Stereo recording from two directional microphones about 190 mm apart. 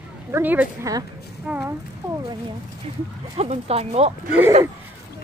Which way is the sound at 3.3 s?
35° right (ahead or behind).